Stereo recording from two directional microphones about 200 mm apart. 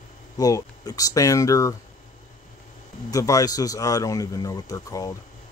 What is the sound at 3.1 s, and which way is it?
Speech, 15° left (ahead or behind).